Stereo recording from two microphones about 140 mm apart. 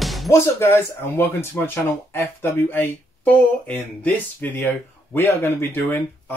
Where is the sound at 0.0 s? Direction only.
Centre (ahead or behind).